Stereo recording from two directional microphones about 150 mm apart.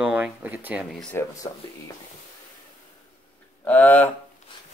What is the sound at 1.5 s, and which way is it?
Speech, 35° left (ahead or behind).